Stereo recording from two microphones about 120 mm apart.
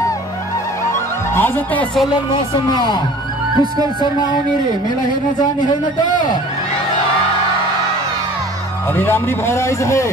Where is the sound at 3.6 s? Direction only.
35° right (ahead or behind).